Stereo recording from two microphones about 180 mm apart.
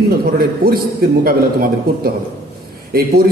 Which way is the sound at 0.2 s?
55° right (ahead or behind).